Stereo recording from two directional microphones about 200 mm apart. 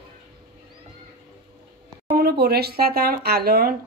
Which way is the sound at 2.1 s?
50° right (ahead or behind).